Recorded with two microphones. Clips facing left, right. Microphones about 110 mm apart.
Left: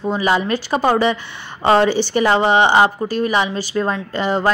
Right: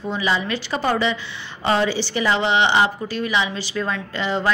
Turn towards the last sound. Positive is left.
turn(degrees=45)  # may be behind; listen again after turning